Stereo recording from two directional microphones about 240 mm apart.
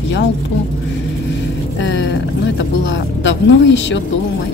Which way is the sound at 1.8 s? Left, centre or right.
Left.